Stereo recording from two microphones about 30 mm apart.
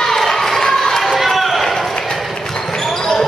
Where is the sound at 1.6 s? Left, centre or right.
Centre.